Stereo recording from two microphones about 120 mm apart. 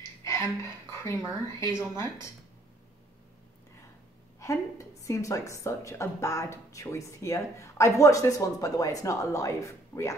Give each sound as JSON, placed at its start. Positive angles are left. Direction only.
{"t": 0.2, "sound": "a sound", "side_deg": 25}
{"t": 1.2, "sound": "a woman's voice", "side_deg": 25}
{"t": 4.4, "sound": "a woman's voice", "side_deg": 25}